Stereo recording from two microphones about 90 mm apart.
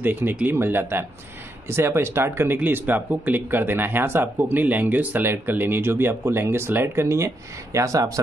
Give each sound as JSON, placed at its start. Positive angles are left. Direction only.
{"t": 0.0, "sound": "speech", "side_deg": -20}